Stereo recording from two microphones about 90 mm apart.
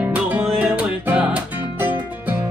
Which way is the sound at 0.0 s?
20° right (ahead or behind).